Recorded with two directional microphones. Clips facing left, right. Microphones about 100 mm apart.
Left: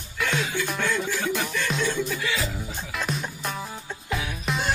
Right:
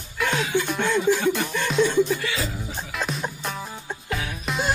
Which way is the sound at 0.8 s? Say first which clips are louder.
Right 7 dB; 20° right (ahead or behind).